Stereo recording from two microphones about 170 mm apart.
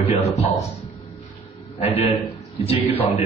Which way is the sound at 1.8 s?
35° left (ahead or behind).